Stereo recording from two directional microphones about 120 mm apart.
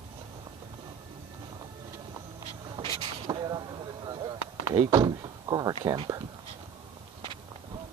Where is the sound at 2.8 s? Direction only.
50° right (ahead or behind).